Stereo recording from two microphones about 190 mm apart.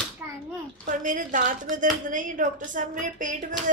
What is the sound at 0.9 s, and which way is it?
A woman's voice, 45° right (ahead or behind).